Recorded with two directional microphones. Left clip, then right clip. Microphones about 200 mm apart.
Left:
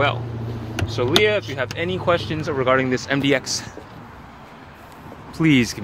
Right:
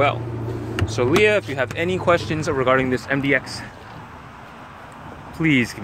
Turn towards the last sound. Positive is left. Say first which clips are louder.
# left 1 dB
turn(degrees=20)  # may be behind; listen again after turning